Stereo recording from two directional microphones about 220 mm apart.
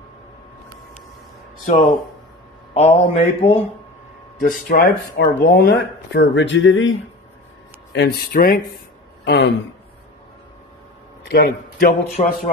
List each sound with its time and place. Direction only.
2.7 s speech: 25° left (ahead or behind)
4.4 s speech: 40° left (ahead or behind); by 7.0 s 60° left (ahead or behind)
7.9 s speech: 45° left (ahead or behind)
11.2 s speech: 45° left (ahead or behind)
12.2 s speech: 30° left (ahead or behind)